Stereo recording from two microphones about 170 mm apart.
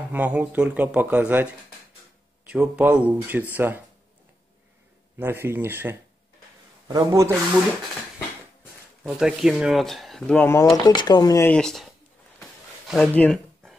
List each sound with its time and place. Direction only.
0.1 s speech: 10° right (ahead or behind)
5.2 s speech: 15° right (ahead or behind)
9.0 s speech: 5° right (ahead or behind); by 10.7 s 15° left (ahead or behind)
10.9 s speech: 25° left (ahead or behind)
11.5 s speech: centre (ahead or behind)